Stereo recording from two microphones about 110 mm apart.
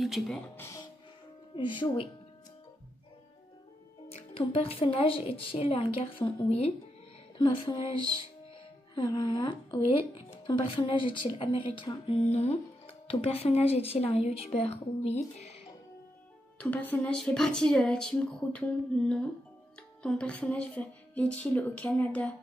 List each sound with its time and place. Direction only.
0.0 s speech: centre (ahead or behind)
0.6 s music: 25° left (ahead or behind)
1.5 s a woman's voice: 50° left (ahead or behind)
4.1 s a woman's voice: 60° left (ahead or behind)
8.9 s a woman's voice: 40° left (ahead or behind); by 15.5 s 85° left
16.5 s speech: 10° left (ahead or behind)